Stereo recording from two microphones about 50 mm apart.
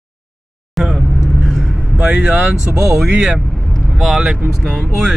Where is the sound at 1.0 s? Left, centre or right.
Centre.